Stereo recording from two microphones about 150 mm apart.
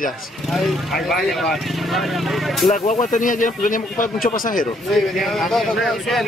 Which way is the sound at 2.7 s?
55° left (ahead or behind).